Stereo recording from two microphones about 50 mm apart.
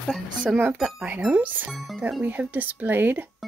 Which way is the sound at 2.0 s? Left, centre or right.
Right.